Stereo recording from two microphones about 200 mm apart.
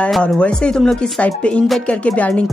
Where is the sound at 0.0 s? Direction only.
5° left (ahead or behind).